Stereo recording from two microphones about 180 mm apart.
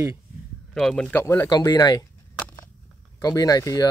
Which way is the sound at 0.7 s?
5° left (ahead or behind).